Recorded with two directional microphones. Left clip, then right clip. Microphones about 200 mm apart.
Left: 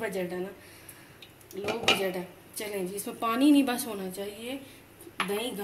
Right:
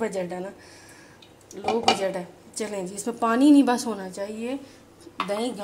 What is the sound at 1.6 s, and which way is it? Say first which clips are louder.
Speech: right 4 dB; 40° right (ahead or behind).